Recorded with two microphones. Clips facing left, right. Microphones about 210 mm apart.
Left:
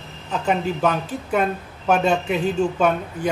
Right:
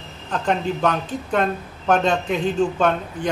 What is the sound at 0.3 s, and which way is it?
Speech, 5° left (ahead or behind).